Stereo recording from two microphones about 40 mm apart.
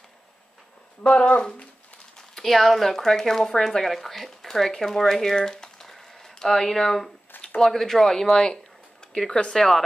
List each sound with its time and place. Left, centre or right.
1.0 s speech: left
2.3 s speech: centre
9.0 s a sound: centre
9.5 s speech: centre